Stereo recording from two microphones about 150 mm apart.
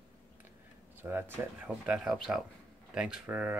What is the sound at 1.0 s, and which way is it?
Speech, 15° right (ahead or behind).